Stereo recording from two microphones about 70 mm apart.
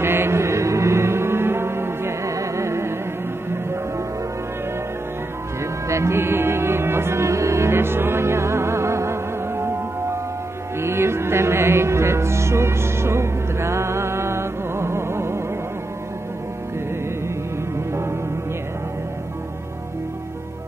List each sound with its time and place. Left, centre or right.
0.0 s music: right
5.6 s music: right
17.7 s music: right